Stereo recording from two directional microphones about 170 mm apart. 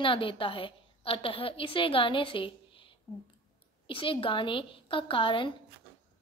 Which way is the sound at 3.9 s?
30° left (ahead or behind).